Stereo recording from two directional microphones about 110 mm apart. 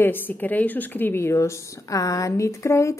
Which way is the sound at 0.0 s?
20° left (ahead or behind).